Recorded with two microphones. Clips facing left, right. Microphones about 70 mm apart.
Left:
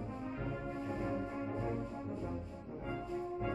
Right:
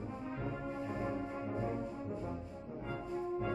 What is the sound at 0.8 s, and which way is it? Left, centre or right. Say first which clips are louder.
Music: left 1 dB; centre.